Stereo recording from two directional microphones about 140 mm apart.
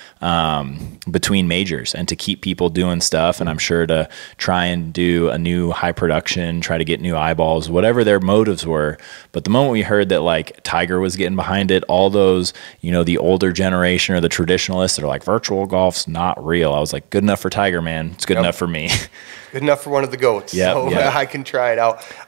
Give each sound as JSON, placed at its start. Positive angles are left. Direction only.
{"t": 0.2, "sound": "speech", "side_deg": -15}